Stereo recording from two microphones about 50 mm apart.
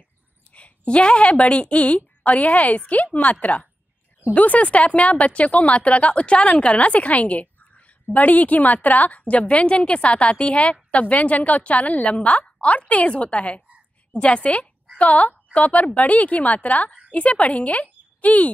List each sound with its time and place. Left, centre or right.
0.5 s speech: left